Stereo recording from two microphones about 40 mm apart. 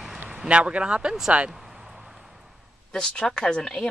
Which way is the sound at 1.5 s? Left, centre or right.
Centre.